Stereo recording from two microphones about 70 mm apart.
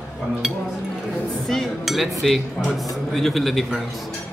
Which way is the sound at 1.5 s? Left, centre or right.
Centre.